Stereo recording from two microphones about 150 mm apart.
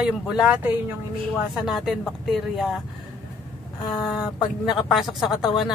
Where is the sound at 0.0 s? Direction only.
5° right (ahead or behind).